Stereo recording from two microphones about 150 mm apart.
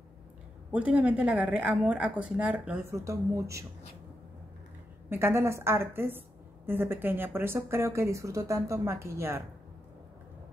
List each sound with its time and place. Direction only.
0.7 s a woman's voice: 10° right (ahead or behind)
5.1 s a woman's voice: 15° right (ahead or behind)